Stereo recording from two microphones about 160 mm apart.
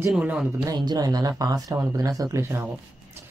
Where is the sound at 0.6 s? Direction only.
25° right (ahead or behind).